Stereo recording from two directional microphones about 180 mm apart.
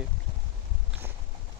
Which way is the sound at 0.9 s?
10° right (ahead or behind).